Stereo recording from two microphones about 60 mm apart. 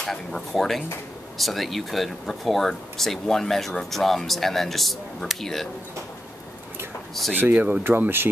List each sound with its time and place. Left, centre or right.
0.0 s speech: centre
7.5 s speech: right
7.8 s speech: right